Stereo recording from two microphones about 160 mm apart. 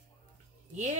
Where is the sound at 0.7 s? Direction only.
45° right (ahead or behind).